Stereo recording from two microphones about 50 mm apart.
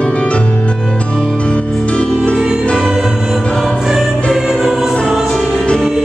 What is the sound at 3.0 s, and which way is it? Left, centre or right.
Music, centre.